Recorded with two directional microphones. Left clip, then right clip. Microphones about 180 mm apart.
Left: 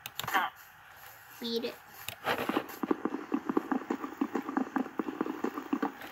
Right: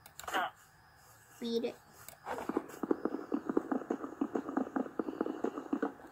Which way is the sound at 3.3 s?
20° left (ahead or behind).